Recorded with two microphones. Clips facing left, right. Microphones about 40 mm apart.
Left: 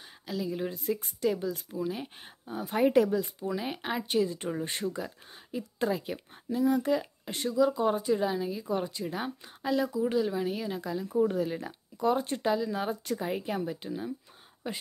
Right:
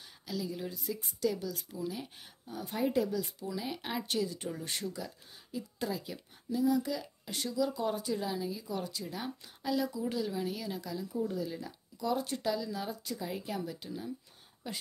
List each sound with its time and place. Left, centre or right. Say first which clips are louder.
0.3 s speech: left 5 dB; left
0.7 s speech: left 7 dB; left
2.8 s speech: left 7 dB; left
3.4 s speech: left 5 dB; left
3.8 s speech: left 6 dB; centre
11.1 s speech: left 9 dB; left
13.4 s speech: left 5 dB; left